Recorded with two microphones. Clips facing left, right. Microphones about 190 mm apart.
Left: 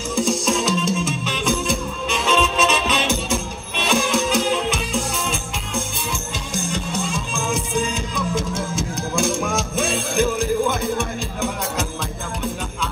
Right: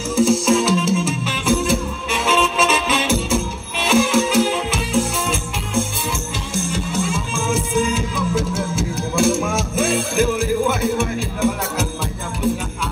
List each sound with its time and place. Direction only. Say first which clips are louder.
0.1 s music: right 6 dB; 5° right (ahead or behind)